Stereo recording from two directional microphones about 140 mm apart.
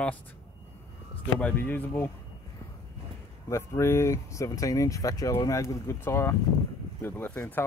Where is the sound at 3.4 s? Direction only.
20° left (ahead or behind).